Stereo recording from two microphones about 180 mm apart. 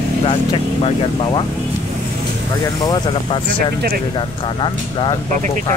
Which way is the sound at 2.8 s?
25° left (ahead or behind).